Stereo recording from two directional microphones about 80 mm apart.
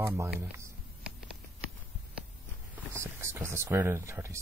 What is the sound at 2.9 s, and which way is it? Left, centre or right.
Speech, right.